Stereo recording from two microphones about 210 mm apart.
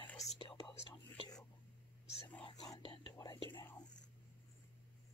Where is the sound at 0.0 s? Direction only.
30° left (ahead or behind).